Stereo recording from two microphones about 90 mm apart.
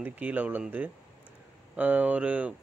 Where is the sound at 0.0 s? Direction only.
20° right (ahead or behind).